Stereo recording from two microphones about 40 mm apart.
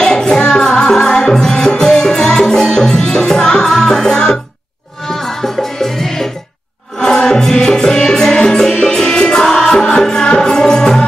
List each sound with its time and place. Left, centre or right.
0.0 s music: centre